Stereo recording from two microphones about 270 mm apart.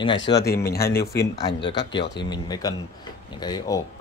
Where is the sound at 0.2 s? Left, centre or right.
Left.